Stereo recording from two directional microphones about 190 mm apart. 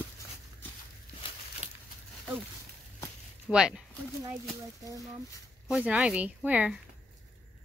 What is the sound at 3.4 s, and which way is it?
Speech, 5° right (ahead or behind).